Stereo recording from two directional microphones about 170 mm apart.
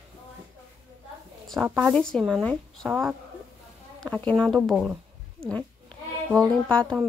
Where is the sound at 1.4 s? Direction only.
Centre (ahead or behind).